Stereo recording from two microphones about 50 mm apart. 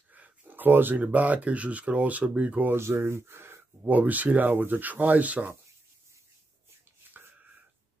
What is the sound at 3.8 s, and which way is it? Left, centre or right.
Mantra, right.